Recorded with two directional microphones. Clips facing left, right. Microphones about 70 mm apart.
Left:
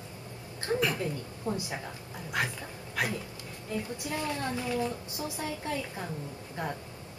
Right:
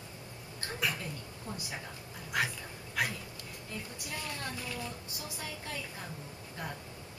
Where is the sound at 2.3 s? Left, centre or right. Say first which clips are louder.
Left 1 dB; centre.